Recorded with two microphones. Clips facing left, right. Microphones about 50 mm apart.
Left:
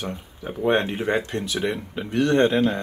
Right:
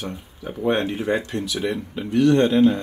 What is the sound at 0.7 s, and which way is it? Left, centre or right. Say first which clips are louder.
Speech: even; left.